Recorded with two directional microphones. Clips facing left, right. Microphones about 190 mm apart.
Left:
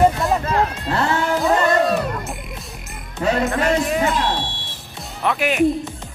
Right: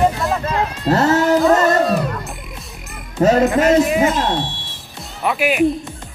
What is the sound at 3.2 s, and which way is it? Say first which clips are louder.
Speech: right 6 dB; 40° right (ahead or behind).